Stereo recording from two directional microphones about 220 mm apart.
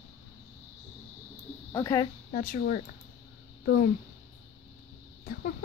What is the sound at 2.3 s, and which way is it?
A woman's voice, 40° left (ahead or behind).